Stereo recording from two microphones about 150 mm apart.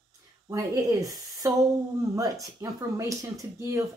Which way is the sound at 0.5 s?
20° right (ahead or behind).